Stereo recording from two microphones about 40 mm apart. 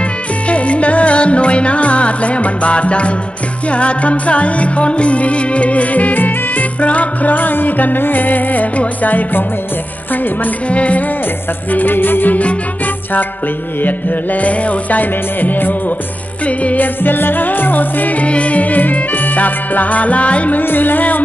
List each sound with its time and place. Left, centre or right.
0.5 s music: left
10.7 s music: left
11.7 s music: left
13.8 s music: left
16.4 s music: left
16.8 s music: left
20.6 s music: left